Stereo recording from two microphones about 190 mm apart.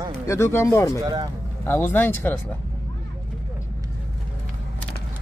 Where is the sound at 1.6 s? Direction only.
10° left (ahead or behind).